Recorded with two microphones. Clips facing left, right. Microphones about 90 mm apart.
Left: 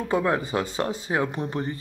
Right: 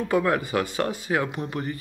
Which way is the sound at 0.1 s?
20° left (ahead or behind).